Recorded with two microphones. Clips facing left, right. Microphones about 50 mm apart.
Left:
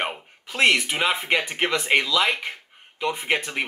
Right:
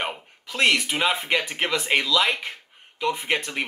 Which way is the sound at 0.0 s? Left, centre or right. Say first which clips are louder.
Left 1 dB; centre.